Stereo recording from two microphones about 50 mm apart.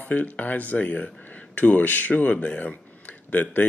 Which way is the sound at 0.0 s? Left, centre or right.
Left.